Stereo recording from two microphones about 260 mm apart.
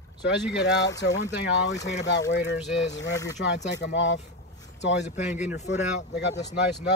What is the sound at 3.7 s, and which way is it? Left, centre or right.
A man's voice, left.